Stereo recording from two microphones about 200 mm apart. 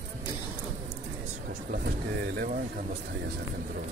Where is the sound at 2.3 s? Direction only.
50° right (ahead or behind).